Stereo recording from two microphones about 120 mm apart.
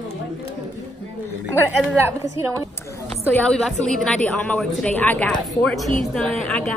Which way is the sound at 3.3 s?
10° left (ahead or behind).